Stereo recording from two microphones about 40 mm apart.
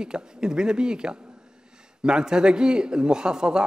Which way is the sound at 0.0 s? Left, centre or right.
Right.